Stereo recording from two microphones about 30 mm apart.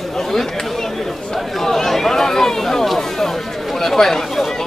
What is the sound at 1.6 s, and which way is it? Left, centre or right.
Chatter, centre.